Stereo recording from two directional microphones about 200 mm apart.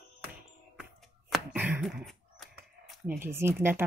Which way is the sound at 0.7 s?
Centre (ahead or behind).